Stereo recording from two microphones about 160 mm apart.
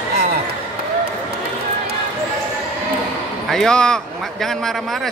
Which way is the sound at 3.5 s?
5° left (ahead or behind).